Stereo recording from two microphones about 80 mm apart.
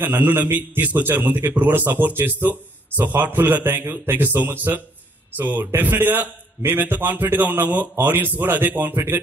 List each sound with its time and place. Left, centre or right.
0.0 s a man's voice: right